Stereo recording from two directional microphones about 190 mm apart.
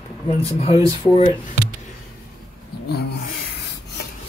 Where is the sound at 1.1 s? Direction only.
30° left (ahead or behind).